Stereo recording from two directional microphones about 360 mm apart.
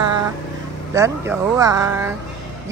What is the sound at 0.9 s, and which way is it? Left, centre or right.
Speech, centre.